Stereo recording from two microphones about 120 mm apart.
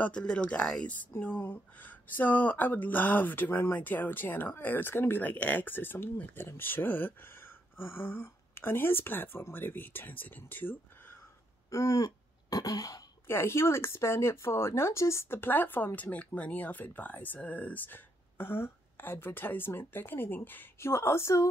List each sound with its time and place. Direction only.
0.0 s speech: 10° left (ahead or behind)
11.7 s speech: 25° left (ahead or behind)